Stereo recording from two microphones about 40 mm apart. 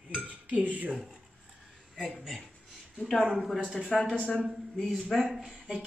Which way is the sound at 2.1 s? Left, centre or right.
Centre.